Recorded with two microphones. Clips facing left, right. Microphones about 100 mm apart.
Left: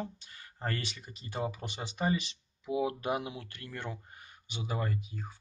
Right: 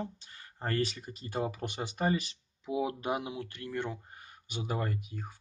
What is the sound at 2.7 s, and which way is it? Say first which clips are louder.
Speech: left 1 dB; 25° right (ahead or behind).